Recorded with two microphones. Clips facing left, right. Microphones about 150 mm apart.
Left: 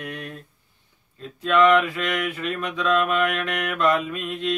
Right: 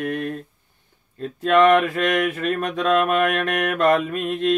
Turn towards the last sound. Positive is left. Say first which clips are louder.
# right 5 dB
turn(degrees=-50)  # may be behind; listen again after turning